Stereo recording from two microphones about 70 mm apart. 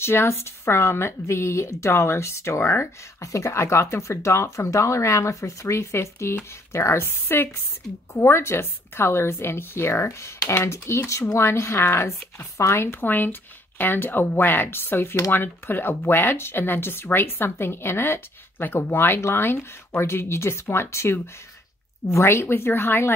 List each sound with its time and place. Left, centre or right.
0.0 s speech: left